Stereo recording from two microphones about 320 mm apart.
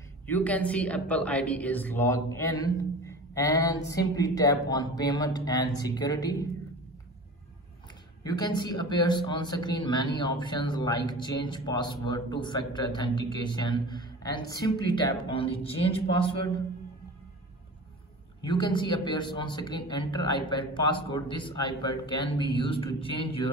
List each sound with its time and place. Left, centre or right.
0.3 s speech: centre
8.2 s speech: centre
18.4 s speech: centre